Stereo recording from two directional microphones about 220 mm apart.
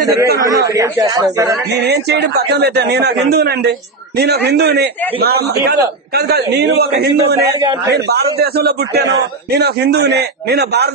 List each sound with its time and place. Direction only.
0.7 s speech: 15° right (ahead or behind)
1.7 s a man's voice: 50° right (ahead or behind)